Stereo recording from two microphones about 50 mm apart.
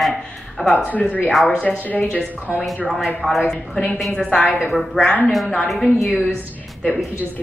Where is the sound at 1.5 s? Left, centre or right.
Centre.